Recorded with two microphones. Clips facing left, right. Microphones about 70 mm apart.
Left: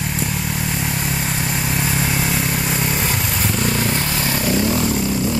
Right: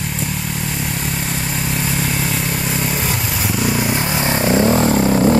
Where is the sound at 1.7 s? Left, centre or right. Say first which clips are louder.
Right 1 dB; centre.